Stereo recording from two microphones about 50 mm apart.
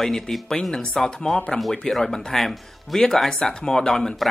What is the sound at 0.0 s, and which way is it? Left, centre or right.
Speech, centre.